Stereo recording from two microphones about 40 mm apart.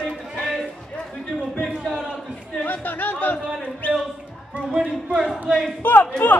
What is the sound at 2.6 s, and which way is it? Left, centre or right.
Speech, left.